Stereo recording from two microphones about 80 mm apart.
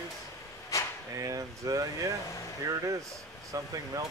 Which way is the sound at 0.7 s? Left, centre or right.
Left.